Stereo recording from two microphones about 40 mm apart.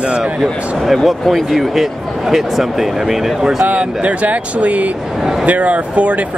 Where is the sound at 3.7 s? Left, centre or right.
Right.